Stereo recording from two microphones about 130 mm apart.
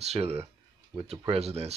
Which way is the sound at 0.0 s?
55° right (ahead or behind).